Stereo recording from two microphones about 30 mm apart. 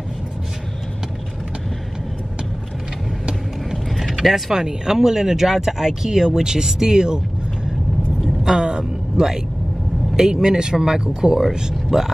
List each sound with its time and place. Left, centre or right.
3.7 s mechanisms: centre
4.6 s speech: right
8.5 s a sound: right
10.1 s speech: centre